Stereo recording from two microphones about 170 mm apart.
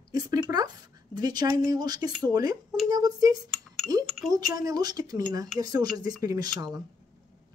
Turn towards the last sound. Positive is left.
turn(degrees=-25)  # may be behind; listen again after turning